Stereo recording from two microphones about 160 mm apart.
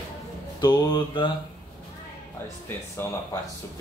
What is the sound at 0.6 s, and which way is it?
Speech, 25° left (ahead or behind).